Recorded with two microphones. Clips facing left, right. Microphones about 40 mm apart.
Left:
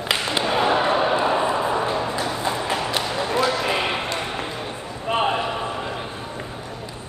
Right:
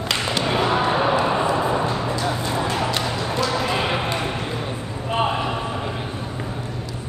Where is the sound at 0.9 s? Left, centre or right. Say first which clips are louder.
Even; centre.